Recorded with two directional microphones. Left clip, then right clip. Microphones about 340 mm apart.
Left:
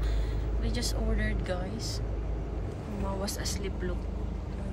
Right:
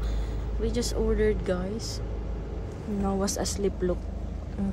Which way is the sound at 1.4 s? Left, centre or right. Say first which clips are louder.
Right 5 dB; right.